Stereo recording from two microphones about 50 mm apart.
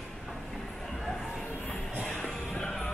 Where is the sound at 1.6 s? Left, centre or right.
Left.